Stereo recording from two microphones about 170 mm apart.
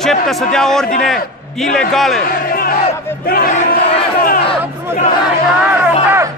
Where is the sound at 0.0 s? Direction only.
5° left (ahead or behind).